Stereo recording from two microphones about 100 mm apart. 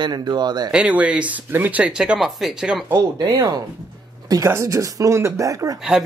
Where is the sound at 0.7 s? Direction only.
10° right (ahead or behind).